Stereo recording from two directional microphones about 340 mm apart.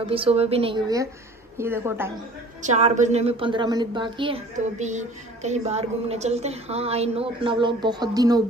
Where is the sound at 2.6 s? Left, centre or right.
Centre.